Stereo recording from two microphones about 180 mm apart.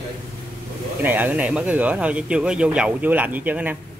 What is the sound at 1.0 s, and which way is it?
Speech, 10° right (ahead or behind).